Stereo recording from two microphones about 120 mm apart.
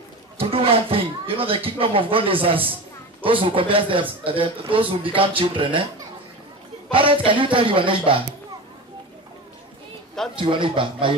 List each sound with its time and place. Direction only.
0.4 s a man's voice: 50° right (ahead or behind)
6.9 s a man's voice: 45° right (ahead or behind)
10.3 s a man's voice: 45° right (ahead or behind)